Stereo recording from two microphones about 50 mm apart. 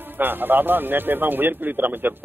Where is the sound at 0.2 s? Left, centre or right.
Right.